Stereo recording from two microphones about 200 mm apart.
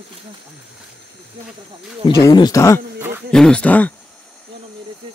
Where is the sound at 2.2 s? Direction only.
20° left (ahead or behind).